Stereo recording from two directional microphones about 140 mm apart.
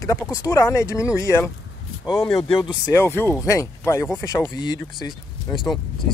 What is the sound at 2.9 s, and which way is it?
Speech, 15° left (ahead or behind).